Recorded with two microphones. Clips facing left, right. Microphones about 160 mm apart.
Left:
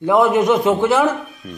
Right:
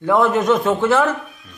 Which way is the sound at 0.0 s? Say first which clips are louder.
Left 2 dB; 15° left (ahead or behind).